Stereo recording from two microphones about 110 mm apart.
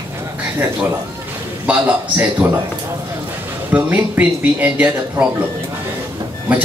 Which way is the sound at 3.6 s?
15° right (ahead or behind).